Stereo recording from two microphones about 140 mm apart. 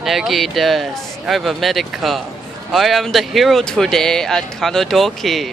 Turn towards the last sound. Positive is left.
turn(degrees=0)  # may be behind; listen again after turning